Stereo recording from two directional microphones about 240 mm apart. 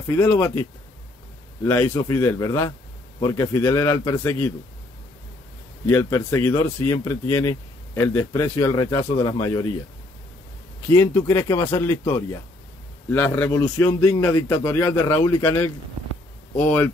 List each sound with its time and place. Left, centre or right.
0.1 s a man's voice: centre
5.9 s a man's voice: centre
10.9 s a man's voice: centre
16.6 s speech: centre